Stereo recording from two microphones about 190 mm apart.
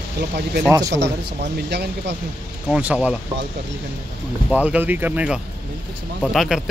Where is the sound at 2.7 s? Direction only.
5° right (ahead or behind).